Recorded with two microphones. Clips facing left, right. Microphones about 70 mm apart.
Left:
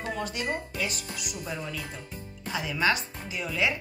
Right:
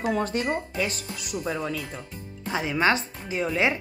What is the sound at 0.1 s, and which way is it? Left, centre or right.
Speech, right.